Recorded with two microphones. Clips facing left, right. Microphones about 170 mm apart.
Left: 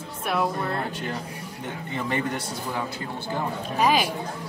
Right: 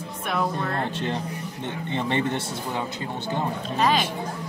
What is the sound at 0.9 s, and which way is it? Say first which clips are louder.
Speech: right 4 dB; 25° right (ahead or behind).